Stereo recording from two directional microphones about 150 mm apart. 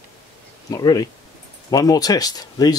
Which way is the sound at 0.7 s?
25° left (ahead or behind).